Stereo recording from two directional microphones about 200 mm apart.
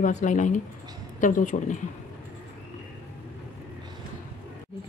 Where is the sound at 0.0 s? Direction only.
40° left (ahead or behind).